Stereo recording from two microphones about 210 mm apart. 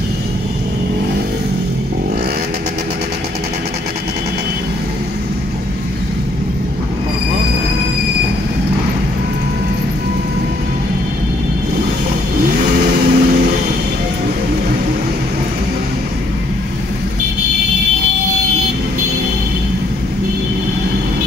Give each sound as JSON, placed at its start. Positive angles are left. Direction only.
{"t": 12.5, "sound": "vehicle", "side_deg": -45}